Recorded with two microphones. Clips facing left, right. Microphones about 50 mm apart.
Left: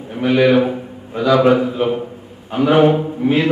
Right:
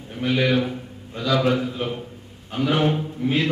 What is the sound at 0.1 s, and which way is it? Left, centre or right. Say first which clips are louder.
A man's voice: left 8 dB; centre.